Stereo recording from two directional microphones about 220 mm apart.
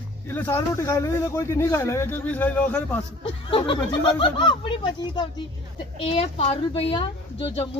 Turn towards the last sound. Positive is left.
turn(degrees=25)  # may be behind; listen again after turning